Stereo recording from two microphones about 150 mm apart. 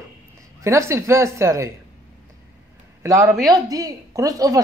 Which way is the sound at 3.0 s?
20° right (ahead or behind).